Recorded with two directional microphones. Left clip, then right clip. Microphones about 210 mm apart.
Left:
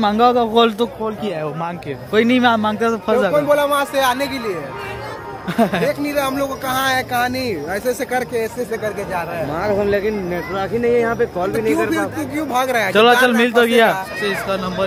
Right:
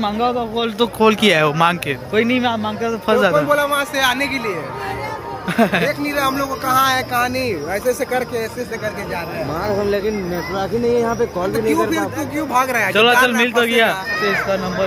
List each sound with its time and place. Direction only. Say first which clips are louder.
0.0 s speech: left 5 dB; 40° left (ahead or behind)
1.3 s speech: right 9 dB; 5° right (ahead or behind)
2.1 s a man's voice: left 4 dB; 30° left (ahead or behind)
3.1 s speech: right 3 dB; 10° left (ahead or behind)
3.4 s a man's voice: left 1 dB; 45° left (ahead or behind)
5.6 s speech: right 1 dB; 10° left (ahead or behind)
5.9 s speech: even; 55° left (ahead or behind)
10.6 s speech: left 1 dB; 5° right (ahead or behind)
11.5 s speech: right 2 dB; 50° left (ahead or behind)
12.9 s a man's voice: left 1 dB; 25° left (ahead or behind)